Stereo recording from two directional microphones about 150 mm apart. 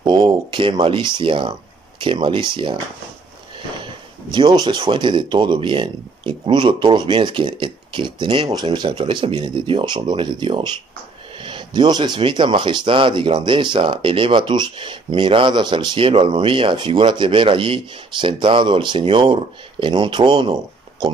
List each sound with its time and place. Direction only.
0.0 s speech: 30° right (ahead or behind)
4.3 s speech: 30° right (ahead or behind)